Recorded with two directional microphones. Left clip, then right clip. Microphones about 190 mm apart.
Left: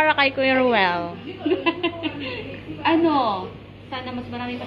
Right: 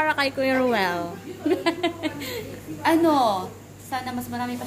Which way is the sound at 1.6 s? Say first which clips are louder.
Left 1 dB; 40° right (ahead or behind).